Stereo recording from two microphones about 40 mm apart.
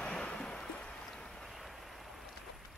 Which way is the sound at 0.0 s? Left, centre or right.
Left.